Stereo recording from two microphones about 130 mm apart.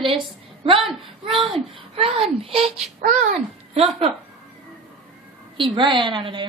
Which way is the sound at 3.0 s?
70° right (ahead or behind).